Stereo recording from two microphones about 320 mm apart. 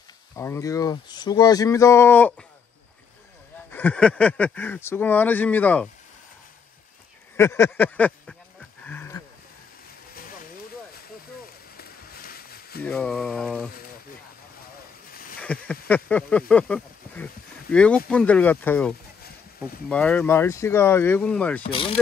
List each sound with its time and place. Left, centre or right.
0.4 s speech: centre
3.7 s speech: centre
7.3 s speech: centre
8.8 s wild animals: centre
11.7 s a sound: left
12.8 s speech: centre
15.4 s speech: centre
21.6 s speech: centre